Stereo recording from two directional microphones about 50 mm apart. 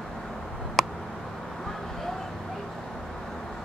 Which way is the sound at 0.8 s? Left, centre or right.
Centre.